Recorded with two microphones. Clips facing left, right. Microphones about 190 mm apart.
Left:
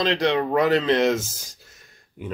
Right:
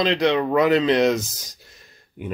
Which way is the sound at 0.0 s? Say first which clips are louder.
Right 2 dB; 15° right (ahead or behind).